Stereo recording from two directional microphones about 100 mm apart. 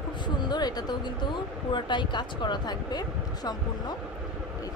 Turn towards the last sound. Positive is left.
turn(degrees=45)  # may be behind; listen again after turning